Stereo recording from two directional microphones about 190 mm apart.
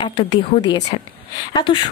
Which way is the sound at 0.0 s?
25° left (ahead or behind).